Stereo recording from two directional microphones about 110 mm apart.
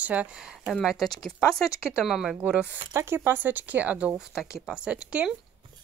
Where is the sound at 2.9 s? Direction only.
20° right (ahead or behind).